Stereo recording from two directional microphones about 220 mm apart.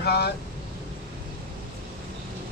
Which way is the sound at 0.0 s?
45° left (ahead or behind).